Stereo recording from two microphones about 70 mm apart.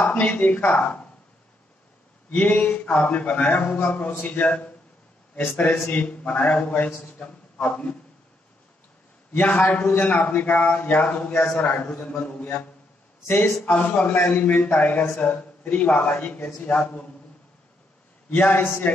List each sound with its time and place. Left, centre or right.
0.0 s a man's voice: left
2.3 s a man's voice: left
9.3 s a man's voice: left
18.3 s a man's voice: left